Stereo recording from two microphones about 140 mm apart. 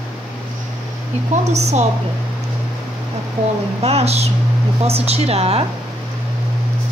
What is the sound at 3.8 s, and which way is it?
A woman's voice, 50° right (ahead or behind).